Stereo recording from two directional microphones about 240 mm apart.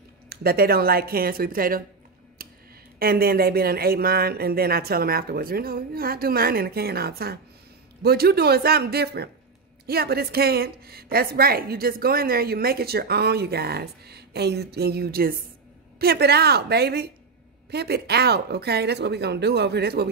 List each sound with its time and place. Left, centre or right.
0.3 s a woman's voice: right
2.4 s a sound: right
3.0 s a woman's voice: right